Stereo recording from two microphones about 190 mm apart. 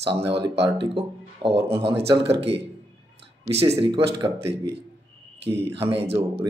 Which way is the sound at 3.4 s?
30° right (ahead or behind).